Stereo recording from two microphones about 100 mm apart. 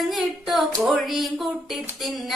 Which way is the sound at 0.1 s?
Centre (ahead or behind).